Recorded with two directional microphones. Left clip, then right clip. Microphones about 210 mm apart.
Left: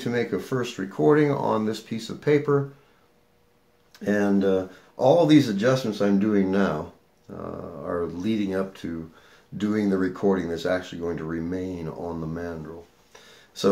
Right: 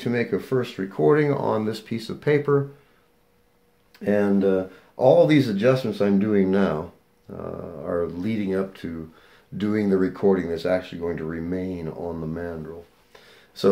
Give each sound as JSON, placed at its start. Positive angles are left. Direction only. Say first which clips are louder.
{"t": 0.0, "sound": "speech", "louder": "right 1 dB", "side_deg": -20}
{"t": 3.9, "sound": "speech", "louder": "right 2 dB", "side_deg": -20}